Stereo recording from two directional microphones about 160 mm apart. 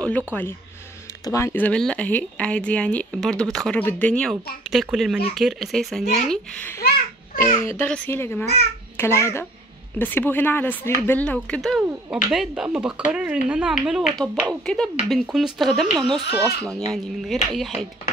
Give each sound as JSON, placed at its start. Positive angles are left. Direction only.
{"t": 0.3, "sound": "a child's voice", "side_deg": 10}